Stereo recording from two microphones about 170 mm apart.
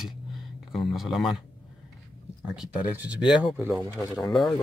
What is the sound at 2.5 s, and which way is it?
Speech, 5° right (ahead or behind).